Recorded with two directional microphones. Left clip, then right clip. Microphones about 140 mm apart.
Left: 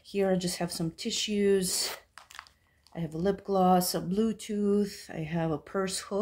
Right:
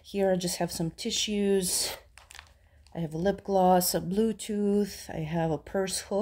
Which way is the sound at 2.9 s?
40° right (ahead or behind).